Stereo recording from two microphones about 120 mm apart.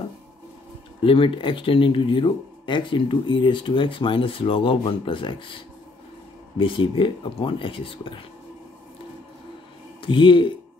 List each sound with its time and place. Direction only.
1.0 s speech: 45° left (ahead or behind)
6.6 s speech: 45° left (ahead or behind)
10.0 s speech: 45° left (ahead or behind)